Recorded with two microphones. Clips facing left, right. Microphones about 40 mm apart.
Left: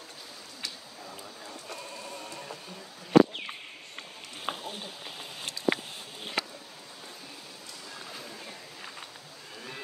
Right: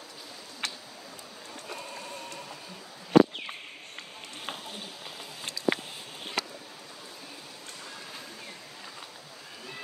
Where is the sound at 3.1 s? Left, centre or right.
Centre.